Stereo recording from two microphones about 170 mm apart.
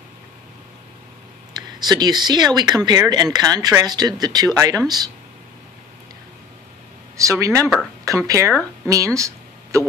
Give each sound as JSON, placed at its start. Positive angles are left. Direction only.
{"t": 1.5, "sound": "speech", "side_deg": -25}
{"t": 7.2, "sound": "speech", "side_deg": -20}